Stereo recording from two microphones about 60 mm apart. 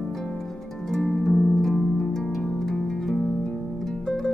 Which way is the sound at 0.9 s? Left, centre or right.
Centre.